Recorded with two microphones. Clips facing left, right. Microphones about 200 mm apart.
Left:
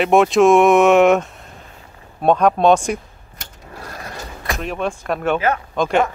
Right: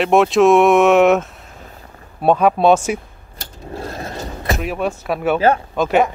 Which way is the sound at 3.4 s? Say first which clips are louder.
Right 8 dB; 25° right (ahead or behind).